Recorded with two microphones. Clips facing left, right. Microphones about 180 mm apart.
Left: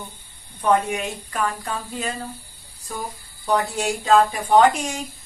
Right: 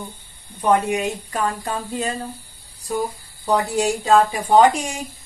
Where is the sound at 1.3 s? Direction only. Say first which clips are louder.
Left 1 dB; 30° right (ahead or behind).